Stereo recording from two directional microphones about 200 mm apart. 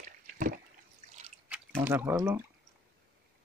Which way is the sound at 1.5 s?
10° right (ahead or behind).